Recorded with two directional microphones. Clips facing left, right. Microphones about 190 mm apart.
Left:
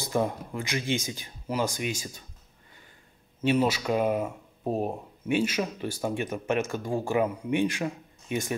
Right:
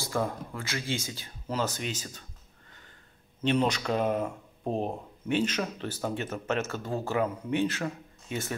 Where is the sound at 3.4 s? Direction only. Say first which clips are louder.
Left 2 dB; 5° left (ahead or behind).